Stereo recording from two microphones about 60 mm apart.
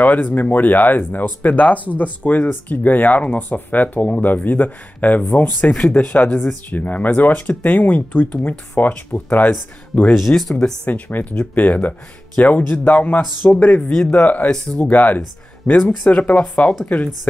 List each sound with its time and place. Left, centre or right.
0.0 s speech: left
5.7 s speech: centre
5.9 s speech: left
10.1 s speech: centre
10.9 s speech: left; by 14.9 s centre
14.9 s speech: left